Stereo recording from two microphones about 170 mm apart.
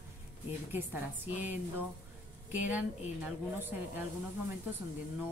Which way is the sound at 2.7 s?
10° right (ahead or behind).